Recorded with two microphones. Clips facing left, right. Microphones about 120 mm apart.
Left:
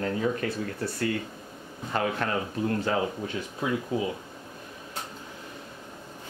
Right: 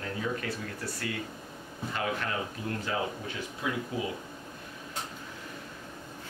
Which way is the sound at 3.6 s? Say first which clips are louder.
Left 5 dB; 35° left (ahead or behind).